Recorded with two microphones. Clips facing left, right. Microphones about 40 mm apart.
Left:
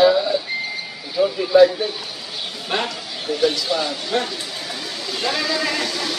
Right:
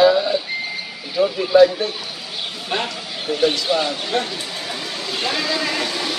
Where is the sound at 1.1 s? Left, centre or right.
Centre.